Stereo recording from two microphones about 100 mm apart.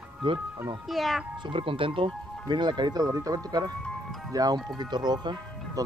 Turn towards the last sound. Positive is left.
turn(degrees=-45)  # may be behind; listen again after turning